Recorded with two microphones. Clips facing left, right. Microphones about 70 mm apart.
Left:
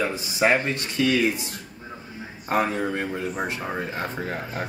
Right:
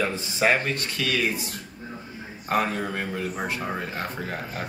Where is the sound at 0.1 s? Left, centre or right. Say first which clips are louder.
Left 1 dB; centre.